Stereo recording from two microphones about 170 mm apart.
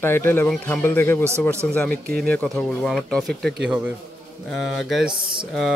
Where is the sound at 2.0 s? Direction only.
60° right (ahead or behind).